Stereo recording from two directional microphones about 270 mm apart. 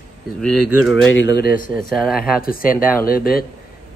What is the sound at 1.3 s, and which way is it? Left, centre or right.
Speech, left.